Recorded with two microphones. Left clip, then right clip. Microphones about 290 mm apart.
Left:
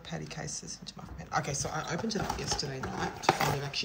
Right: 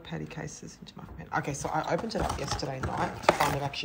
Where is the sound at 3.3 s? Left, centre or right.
Right.